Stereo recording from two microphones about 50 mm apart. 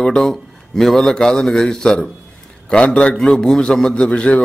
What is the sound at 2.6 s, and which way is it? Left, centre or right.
Speech, left.